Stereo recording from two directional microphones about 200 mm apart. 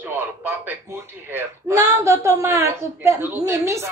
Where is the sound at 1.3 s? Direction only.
15° right (ahead or behind).